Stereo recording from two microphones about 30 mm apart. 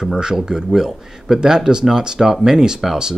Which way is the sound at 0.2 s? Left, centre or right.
Right.